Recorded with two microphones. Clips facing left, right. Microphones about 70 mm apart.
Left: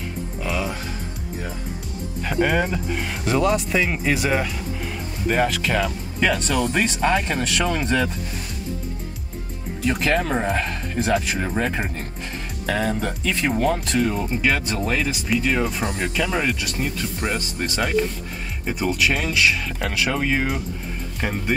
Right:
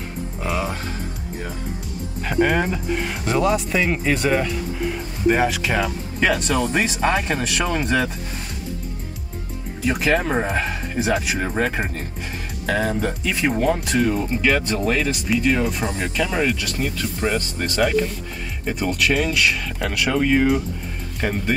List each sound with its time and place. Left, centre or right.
0.5 s music: right
2.4 s speech: centre
5.3 s speech: centre
9.8 s speech: centre
12.6 s speech: centre